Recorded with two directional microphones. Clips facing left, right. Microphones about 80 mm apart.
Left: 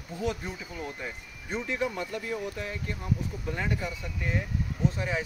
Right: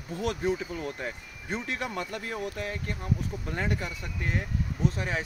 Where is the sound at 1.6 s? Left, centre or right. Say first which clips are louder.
Left 5 dB; right.